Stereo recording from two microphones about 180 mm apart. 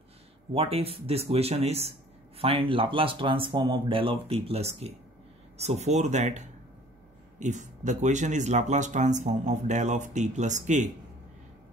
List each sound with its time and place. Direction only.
0.5 s speech: 35° right (ahead or behind)